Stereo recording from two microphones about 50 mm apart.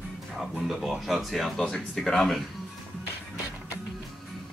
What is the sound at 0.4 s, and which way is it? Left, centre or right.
Speech, centre.